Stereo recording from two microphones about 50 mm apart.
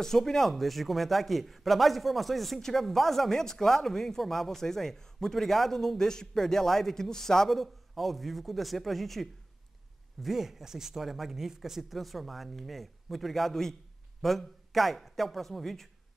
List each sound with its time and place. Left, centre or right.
0.0 s a man's voice: centre